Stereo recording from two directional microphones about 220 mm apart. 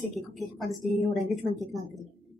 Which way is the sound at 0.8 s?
Centre (ahead or behind).